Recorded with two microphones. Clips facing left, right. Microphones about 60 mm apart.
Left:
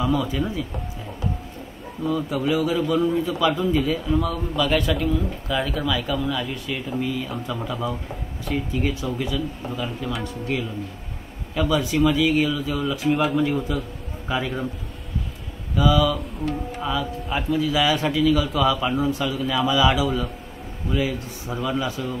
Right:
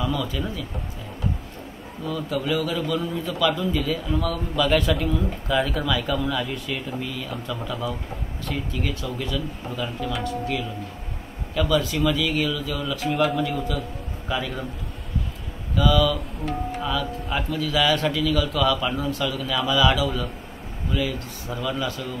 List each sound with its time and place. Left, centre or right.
0.0 s speech: centre
2.0 s a man's voice: centre
4.6 s a man's voice: centre
11.5 s a man's voice: centre
13.6 s a man's voice: left
15.7 s a man's voice: centre
16.2 s speech: centre
16.8 s a man's voice: centre